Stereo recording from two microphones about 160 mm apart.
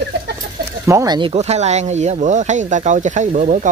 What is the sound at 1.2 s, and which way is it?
Speech, 40° right (ahead or behind).